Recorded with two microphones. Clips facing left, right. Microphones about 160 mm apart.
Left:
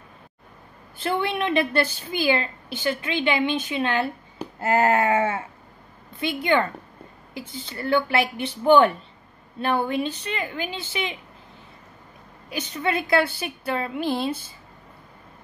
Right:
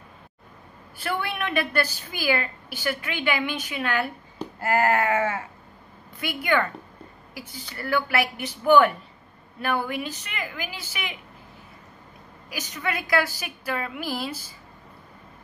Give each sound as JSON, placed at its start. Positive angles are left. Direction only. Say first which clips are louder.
{"t": 0.9, "sound": "a woman's voice", "louder": "left 4 dB", "side_deg": 20}
{"t": 12.4, "sound": "a woman's voice", "louder": "left 4 dB", "side_deg": 25}